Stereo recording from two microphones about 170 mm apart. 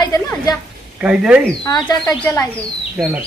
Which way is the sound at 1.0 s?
5° right (ahead or behind).